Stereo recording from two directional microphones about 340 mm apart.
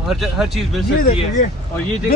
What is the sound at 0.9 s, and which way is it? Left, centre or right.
Speech, left.